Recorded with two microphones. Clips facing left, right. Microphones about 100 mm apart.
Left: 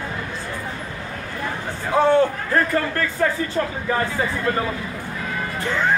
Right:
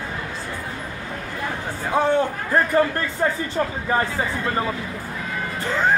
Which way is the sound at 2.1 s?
15° right (ahead or behind).